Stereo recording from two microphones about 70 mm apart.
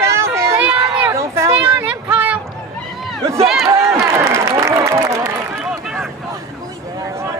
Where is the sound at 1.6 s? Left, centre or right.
Right.